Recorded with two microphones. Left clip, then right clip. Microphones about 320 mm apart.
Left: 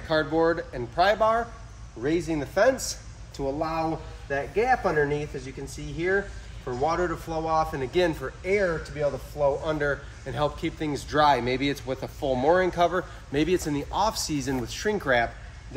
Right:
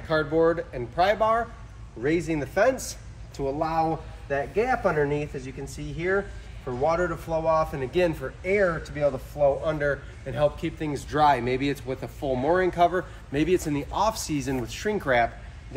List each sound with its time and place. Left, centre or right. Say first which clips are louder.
0.1 s speech: right 1 dB; centre